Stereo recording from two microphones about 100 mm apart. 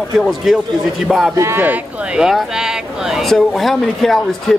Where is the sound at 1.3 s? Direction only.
25° right (ahead or behind).